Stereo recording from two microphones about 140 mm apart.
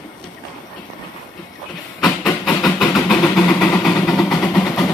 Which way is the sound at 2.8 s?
5° left (ahead or behind).